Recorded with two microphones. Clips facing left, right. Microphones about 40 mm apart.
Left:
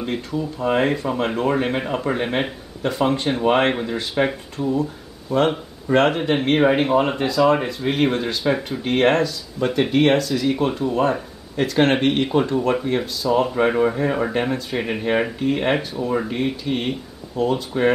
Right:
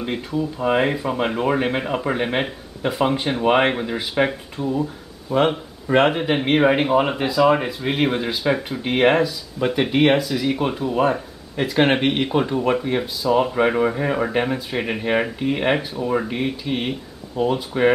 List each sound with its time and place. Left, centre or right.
0.0 s speech: centre